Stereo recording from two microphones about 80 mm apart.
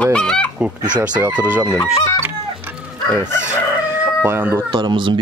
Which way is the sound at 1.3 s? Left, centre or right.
Right.